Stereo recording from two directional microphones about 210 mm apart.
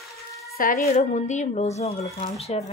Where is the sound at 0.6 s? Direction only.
35° left (ahead or behind).